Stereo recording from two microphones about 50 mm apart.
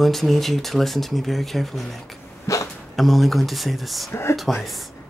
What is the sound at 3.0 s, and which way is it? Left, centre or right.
Speech, centre.